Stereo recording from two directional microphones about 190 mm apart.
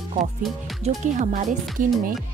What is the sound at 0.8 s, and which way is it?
Speech, 40° right (ahead or behind).